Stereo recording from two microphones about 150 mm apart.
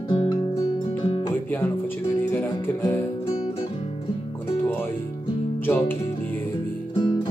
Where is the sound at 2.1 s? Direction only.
15° left (ahead or behind).